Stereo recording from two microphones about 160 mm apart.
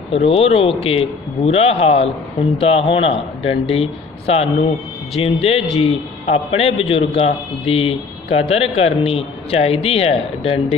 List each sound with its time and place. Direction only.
0.1 s speech: 35° left (ahead or behind)